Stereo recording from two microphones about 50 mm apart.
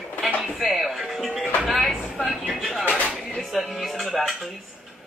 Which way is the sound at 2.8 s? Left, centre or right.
Left.